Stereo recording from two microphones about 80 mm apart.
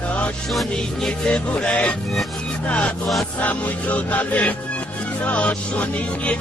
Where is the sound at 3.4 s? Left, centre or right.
Centre.